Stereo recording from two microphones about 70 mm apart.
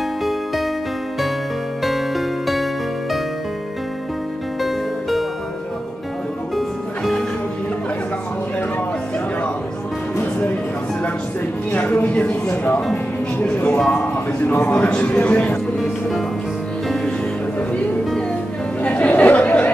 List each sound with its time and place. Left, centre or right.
1.8 s music: centre
4.6 s music: centre
11.7 s a sound: left
12.9 s music: left
13.7 s speech: centre
14.0 s speech: left
15.8 s music: centre
18.8 s chatter: left